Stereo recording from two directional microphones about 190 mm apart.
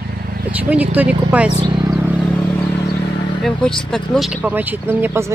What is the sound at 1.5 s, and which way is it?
Vehicle, 25° right (ahead or behind).